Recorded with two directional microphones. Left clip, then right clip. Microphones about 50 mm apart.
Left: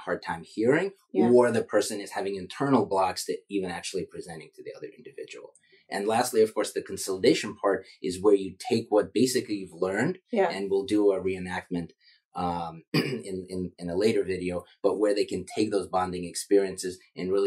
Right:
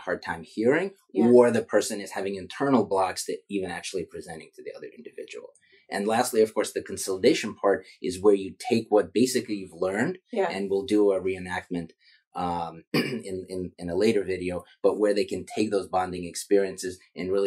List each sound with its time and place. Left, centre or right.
0.0 s speech: right